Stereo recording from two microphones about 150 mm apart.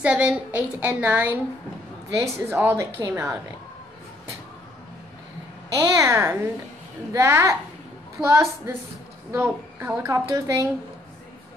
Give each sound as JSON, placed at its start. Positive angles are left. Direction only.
{"t": 0.0, "sound": "a woman's voice", "side_deg": -10}
{"t": 5.8, "sound": "a woman's voice", "side_deg": -20}